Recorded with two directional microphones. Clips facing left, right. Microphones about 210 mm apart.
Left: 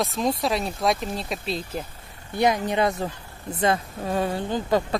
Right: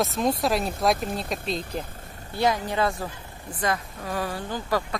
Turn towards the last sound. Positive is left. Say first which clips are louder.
# left 4 dB
turn(degrees=20)  # may be behind; listen again after turning